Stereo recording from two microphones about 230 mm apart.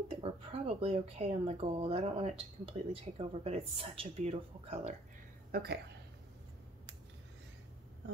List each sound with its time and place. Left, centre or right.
0.1 s speech: right
5.5 s speech: right